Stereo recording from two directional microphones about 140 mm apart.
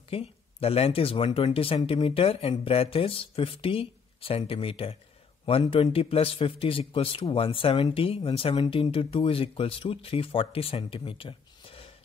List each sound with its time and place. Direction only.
0.1 s a man's voice: 45° left (ahead or behind)